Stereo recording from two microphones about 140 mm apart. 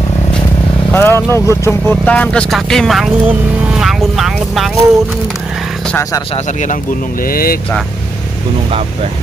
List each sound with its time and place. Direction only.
0.9 s speech: 15° left (ahead or behind); by 3.1 s centre (ahead or behind)
3.3 s vehicle: 5° right (ahead or behind)
6.3 s speech: 60° left (ahead or behind); by 7.5 s 90° left